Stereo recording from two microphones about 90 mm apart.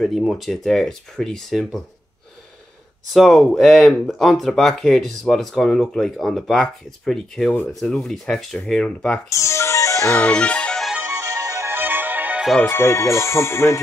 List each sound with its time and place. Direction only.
0.0 s speech: centre (ahead or behind)
3.1 s speech: centre (ahead or behind)
9.3 s music: 35° left (ahead or behind)
10.1 s music: 15° left (ahead or behind)
11.4 s music: 30° right (ahead or behind)
12.6 s speech: 30° left (ahead or behind)